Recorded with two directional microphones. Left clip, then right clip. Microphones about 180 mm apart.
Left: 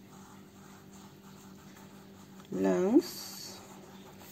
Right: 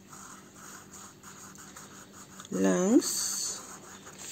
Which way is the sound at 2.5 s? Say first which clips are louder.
Right 2 dB; 20° right (ahead or behind).